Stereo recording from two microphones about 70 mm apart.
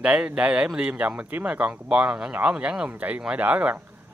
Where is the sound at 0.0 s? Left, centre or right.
Centre.